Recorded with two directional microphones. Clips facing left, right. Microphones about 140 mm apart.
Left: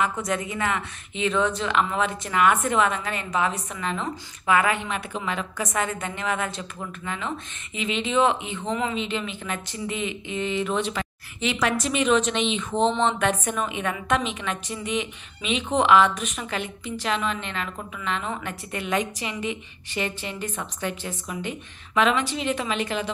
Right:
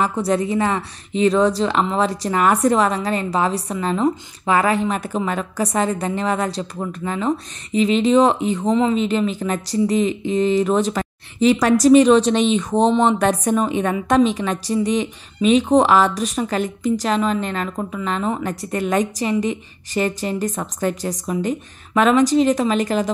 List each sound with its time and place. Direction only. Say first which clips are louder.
0.0 s speech: right 7 dB; 35° right (ahead or behind)